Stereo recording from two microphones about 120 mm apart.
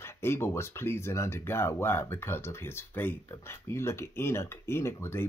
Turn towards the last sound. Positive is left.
turn(degrees=20)  # may be behind; listen again after turning